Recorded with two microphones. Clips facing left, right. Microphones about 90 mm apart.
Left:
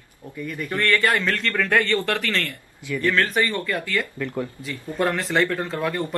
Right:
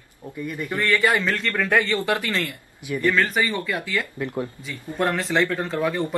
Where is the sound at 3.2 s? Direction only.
5° right (ahead or behind).